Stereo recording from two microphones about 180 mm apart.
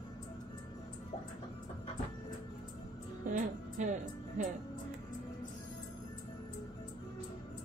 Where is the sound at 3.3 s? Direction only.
45° right (ahead or behind).